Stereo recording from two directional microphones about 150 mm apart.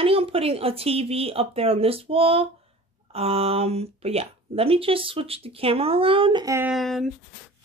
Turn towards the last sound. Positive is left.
turn(degrees=0)  # may be behind; listen again after turning